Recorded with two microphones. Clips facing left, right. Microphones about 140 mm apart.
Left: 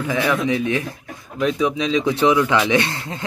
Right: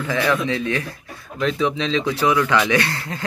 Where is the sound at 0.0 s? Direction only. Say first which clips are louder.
Left 1 dB; 15° left (ahead or behind).